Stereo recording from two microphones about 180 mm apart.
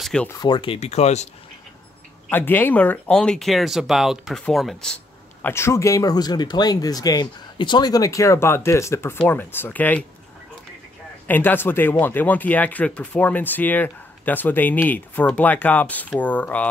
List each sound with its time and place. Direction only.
0.0 s speech: 5° left (ahead or behind)
0.3 s speech: 25° left (ahead or behind); by 1.3 s 40° left (ahead or behind)
2.2 s speech: 10° left (ahead or behind)
11.2 s speech: 10° left (ahead or behind)